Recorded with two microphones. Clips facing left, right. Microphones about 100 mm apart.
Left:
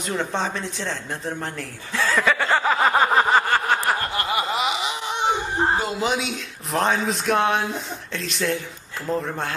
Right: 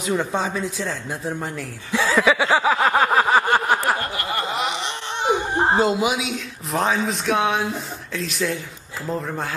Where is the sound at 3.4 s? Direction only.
15° right (ahead or behind).